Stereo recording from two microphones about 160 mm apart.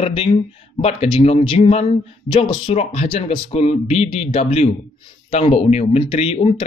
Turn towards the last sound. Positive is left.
turn(degrees=40)  # may be behind; listen again after turning